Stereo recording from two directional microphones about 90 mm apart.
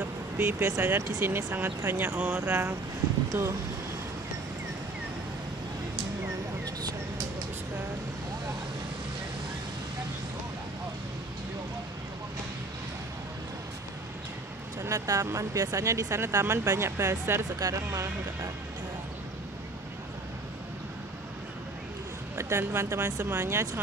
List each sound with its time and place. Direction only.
0.0 s speech: 30° right (ahead or behind)
14.8 s speech: 35° right (ahead or behind)
22.4 s speech: 30° right (ahead or behind)